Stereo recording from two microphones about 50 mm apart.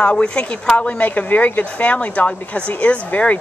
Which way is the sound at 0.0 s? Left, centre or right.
Centre.